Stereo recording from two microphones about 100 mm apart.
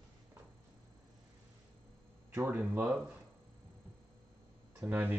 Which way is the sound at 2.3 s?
20° right (ahead or behind).